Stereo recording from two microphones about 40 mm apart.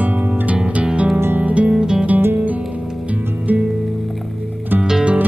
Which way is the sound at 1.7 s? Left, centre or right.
Centre.